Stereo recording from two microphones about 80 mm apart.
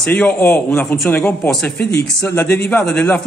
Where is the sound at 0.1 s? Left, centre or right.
Centre.